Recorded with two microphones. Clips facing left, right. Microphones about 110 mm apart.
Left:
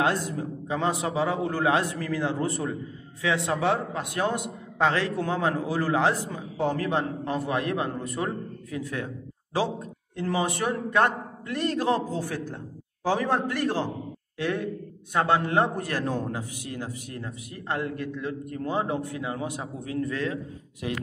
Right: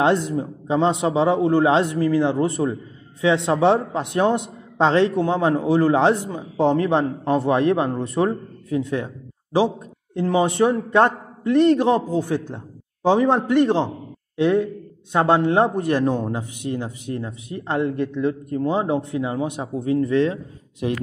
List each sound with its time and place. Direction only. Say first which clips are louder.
0.0 s a man's voice: right 7 dB; 20° right (ahead or behind)